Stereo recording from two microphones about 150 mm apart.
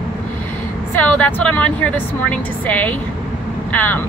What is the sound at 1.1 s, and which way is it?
A woman's voice, 10° left (ahead or behind).